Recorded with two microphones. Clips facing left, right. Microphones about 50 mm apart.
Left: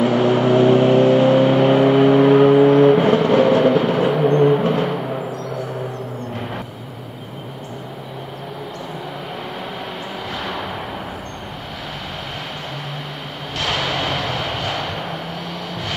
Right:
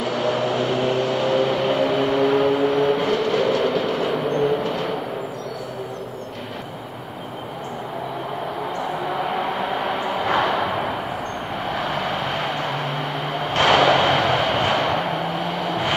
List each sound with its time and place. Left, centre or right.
0.0 s vehicle: left
13.6 s vehicle: right